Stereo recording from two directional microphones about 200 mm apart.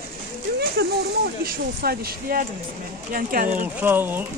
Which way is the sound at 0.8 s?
55° right (ahead or behind).